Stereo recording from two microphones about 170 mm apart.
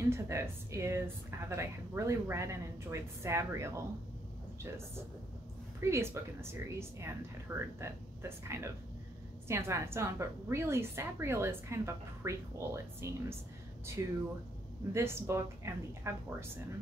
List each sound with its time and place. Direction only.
0.1 s speech: 15° right (ahead or behind)
5.8 s speech: 15° right (ahead or behind)